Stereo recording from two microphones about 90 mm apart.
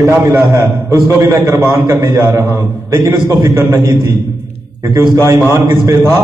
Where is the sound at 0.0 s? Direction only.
35° right (ahead or behind).